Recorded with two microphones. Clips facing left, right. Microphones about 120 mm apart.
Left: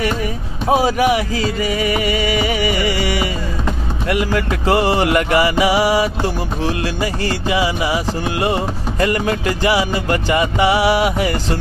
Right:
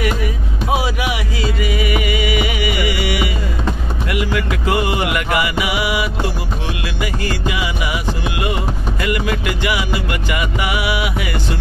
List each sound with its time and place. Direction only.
0.7 s music: 40° left (ahead or behind)